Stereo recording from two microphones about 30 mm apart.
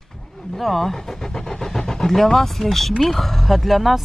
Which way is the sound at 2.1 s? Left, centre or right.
Centre.